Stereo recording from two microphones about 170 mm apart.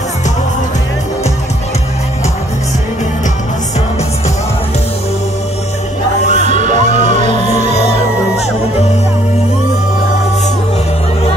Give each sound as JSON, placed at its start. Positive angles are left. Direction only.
{"t": 6.3, "sound": "music", "side_deg": -45}